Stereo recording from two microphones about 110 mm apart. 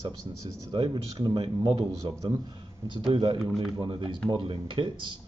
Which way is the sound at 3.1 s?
50° right (ahead or behind).